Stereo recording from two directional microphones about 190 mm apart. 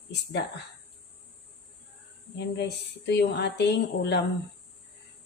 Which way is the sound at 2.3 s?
65° left (ahead or behind).